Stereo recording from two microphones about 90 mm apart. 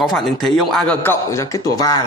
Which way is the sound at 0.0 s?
Centre (ahead or behind).